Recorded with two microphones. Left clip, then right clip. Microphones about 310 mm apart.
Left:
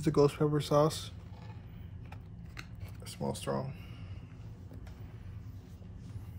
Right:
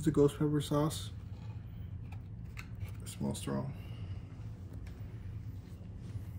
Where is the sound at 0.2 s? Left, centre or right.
Left.